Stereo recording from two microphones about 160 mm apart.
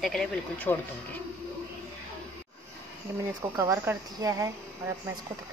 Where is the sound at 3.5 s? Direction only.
20° right (ahead or behind).